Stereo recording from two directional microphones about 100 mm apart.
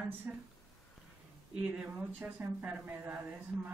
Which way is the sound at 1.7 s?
10° right (ahead or behind).